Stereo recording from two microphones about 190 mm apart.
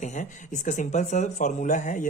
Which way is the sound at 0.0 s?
40° left (ahead or behind).